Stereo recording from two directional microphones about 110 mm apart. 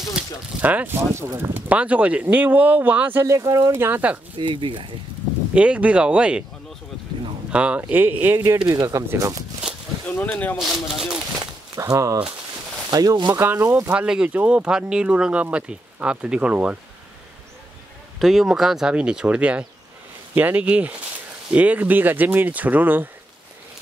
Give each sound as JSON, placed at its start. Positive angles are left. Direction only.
{"t": 0.1, "sound": "speech", "side_deg": -15}
{"t": 3.3, "sound": "speech", "side_deg": -30}
{"t": 4.4, "sound": "speech", "side_deg": -50}
{"t": 5.5, "sound": "speech", "side_deg": -10}
{"t": 7.5, "sound": "speech", "side_deg": -10}
{"t": 8.5, "sound": "speech", "side_deg": -40}
{"t": 10.1, "sound": "speech", "side_deg": 15}
{"t": 10.6, "sound": "speech", "side_deg": 0}
{"t": 11.7, "sound": "speech", "side_deg": -30}
{"t": 13.4, "sound": "speech", "side_deg": -20}
{"t": 13.9, "sound": "speech", "side_deg": -10}
{"t": 18.2, "sound": "speech", "side_deg": -5}